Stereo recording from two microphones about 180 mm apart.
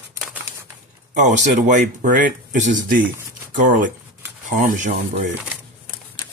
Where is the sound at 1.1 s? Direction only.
45° right (ahead or behind).